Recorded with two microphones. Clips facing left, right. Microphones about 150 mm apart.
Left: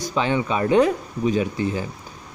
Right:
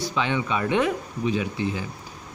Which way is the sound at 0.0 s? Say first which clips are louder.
Left 3 dB; 40° left (ahead or behind).